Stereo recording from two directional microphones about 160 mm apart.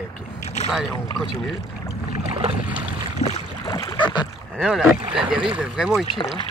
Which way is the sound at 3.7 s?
25° left (ahead or behind).